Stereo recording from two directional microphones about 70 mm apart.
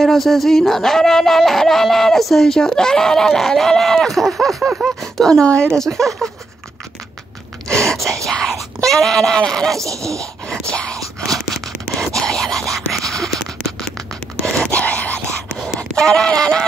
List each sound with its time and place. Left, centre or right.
0.0 s speech: centre
4.6 s a sound: centre
5.0 s speech: centre
8.3 s speech: centre
9.8 s speech: right
10.7 s whispering: centre
14.4 s a sound: centre
15.9 s speech: centre